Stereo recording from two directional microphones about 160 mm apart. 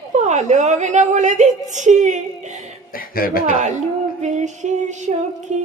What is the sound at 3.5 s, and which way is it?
Female singing, 50° right (ahead or behind).